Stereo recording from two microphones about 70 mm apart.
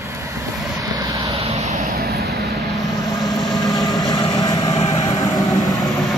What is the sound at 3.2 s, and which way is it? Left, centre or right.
Vehicle, left.